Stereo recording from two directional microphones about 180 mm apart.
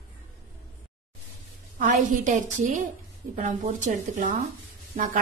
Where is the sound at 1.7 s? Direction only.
50° right (ahead or behind).